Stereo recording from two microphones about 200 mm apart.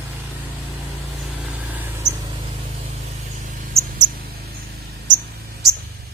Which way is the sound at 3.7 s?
40° right (ahead or behind).